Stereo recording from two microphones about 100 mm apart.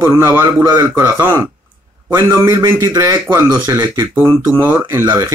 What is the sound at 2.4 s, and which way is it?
Speech, 25° right (ahead or behind).